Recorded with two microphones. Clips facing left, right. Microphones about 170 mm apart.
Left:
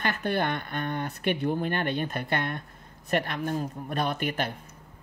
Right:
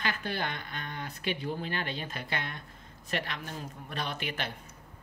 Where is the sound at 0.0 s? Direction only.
50° left (ahead or behind).